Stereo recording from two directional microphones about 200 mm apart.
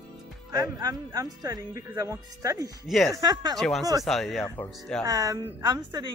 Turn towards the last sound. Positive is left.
turn(degrees=-20)  # may be behind; listen again after turning